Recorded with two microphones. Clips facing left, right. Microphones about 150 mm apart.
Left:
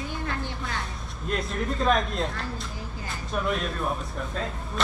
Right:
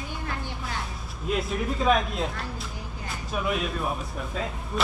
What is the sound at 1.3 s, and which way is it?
Speech, 5° right (ahead or behind).